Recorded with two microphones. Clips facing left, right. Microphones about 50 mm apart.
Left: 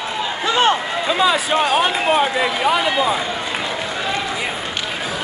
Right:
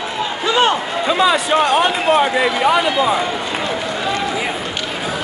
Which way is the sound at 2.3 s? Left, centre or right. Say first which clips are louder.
Right 3 dB; centre.